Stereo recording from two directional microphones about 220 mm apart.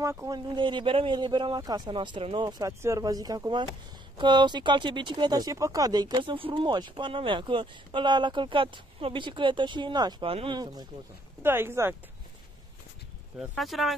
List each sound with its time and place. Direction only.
0.0 s speech: 15° right (ahead or behind)
13.4 s speech: centre (ahead or behind)